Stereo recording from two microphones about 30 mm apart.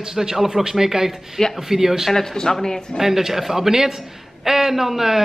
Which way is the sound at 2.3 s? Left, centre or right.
Centre.